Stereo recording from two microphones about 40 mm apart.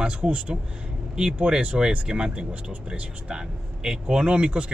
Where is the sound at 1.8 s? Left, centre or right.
Centre.